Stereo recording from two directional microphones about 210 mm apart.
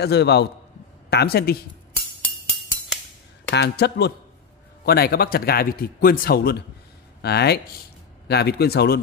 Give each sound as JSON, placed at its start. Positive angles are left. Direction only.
{"t": 0.0, "sound": "a man's voice", "side_deg": 50}
{"t": 3.4, "sound": "a man's voice", "side_deg": 55}